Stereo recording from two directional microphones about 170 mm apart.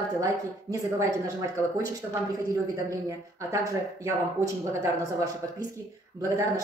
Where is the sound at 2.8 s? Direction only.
20° right (ahead or behind).